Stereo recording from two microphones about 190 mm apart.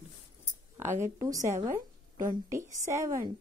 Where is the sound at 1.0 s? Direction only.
15° right (ahead or behind).